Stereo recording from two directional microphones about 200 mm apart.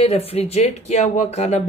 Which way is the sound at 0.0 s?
30° left (ahead or behind).